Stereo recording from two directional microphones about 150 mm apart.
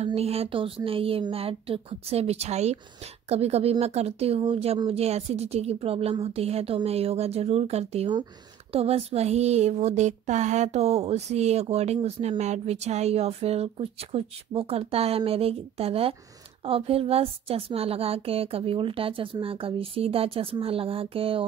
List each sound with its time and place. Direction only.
0.0 s speech: 45° right (ahead or behind)
4.4 s speech: 30° right (ahead or behind)
4.7 s speech: 40° right (ahead or behind)